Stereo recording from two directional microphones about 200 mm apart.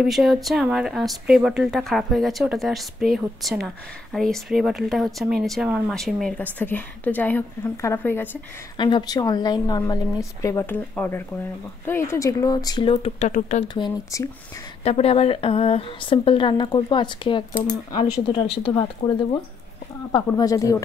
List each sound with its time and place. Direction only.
0.0 s speech: centre (ahead or behind)
8.7 s a woman's voice: 25° left (ahead or behind)
13.7 s a woman's voice: 20° left (ahead or behind)
14.8 s a woman's voice: 30° left (ahead or behind)
18.6 s a woman's voice: 20° left (ahead or behind)